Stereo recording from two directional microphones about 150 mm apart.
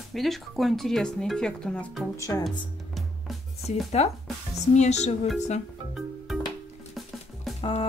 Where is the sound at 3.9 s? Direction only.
45° left (ahead or behind).